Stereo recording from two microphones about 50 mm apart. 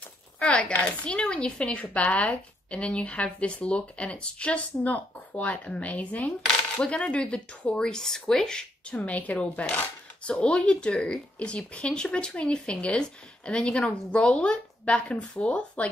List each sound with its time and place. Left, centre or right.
0.5 s speech: left
8.9 s speech: left
10.3 s speech: centre